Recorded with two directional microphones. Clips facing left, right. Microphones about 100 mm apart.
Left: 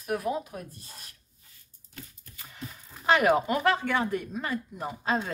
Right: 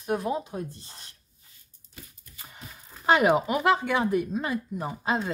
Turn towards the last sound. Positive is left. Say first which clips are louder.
# right 1 dB
turn(degrees=-15)  # may be behind; listen again after turning